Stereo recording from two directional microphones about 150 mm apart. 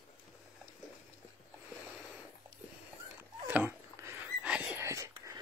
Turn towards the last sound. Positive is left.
turn(degrees=-20)  # may be behind; listen again after turning